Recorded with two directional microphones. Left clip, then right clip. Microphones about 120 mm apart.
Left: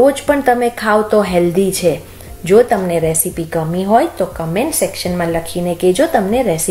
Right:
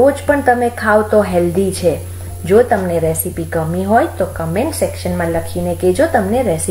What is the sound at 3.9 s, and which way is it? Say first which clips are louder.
A woman's voice: left 1 dB; 15° left (ahead or behind).